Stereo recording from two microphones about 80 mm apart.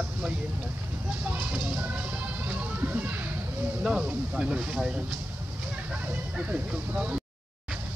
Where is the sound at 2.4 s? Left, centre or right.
Centre.